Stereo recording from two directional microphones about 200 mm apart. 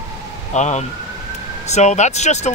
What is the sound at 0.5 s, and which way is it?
Speech, 35° left (ahead or behind).